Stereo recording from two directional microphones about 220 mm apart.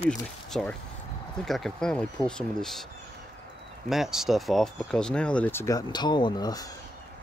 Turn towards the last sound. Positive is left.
turn(degrees=20)  # may be behind; listen again after turning